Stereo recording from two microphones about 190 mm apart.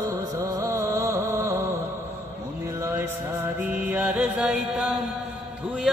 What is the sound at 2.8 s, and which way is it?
Music, 15° right (ahead or behind).